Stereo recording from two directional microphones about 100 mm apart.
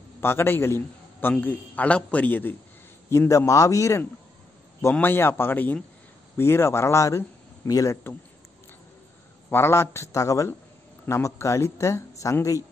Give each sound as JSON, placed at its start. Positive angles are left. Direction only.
{"t": 0.2, "sound": "a man's voice", "side_deg": 25}
{"t": 3.1, "sound": "a man's voice", "side_deg": 30}
{"t": 5.0, "sound": "speech", "side_deg": 20}
{"t": 9.5, "sound": "speech", "side_deg": 25}